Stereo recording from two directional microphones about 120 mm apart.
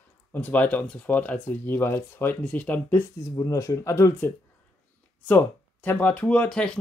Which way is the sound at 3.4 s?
25° left (ahead or behind).